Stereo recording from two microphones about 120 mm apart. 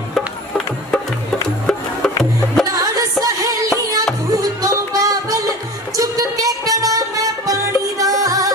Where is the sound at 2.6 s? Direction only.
30° right (ahead or behind).